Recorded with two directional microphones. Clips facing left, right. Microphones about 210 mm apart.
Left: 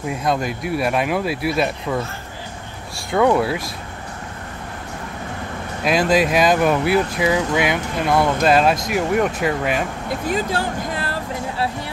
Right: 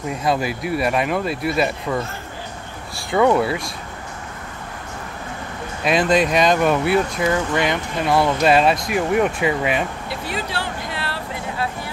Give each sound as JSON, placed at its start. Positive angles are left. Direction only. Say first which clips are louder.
{"t": 0.0, "sound": "speech", "louder": "even", "side_deg": 0}
{"t": 3.1, "sound": "speech", "louder": "even", "side_deg": 0}
{"t": 5.9, "sound": "speech", "louder": "even", "side_deg": 0}
{"t": 10.0, "sound": "speech", "louder": "left 5 dB", "side_deg": 45}